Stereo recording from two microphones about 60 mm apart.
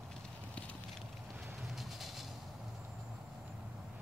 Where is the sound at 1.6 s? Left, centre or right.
Centre.